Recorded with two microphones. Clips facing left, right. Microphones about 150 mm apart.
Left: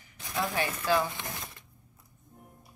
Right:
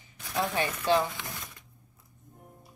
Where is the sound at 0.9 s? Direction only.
25° right (ahead or behind).